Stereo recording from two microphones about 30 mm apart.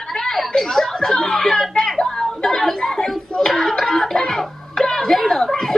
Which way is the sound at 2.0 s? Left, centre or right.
Centre.